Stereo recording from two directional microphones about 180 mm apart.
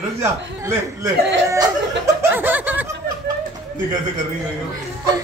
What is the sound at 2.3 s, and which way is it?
Snicker, 10° right (ahead or behind).